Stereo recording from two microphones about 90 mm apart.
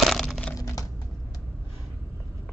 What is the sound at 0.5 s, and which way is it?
Typing, 40° left (ahead or behind).